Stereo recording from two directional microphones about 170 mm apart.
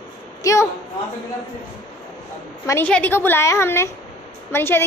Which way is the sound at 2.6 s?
15° left (ahead or behind).